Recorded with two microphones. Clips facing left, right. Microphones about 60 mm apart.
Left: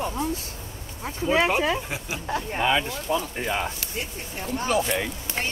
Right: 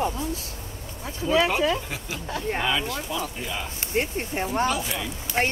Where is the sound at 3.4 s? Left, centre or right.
Left.